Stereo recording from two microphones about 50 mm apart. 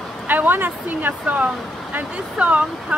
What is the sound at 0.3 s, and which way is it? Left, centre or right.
Speech, right.